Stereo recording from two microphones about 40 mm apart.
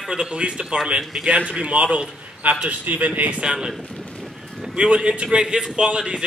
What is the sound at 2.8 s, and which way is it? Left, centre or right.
Speech, right.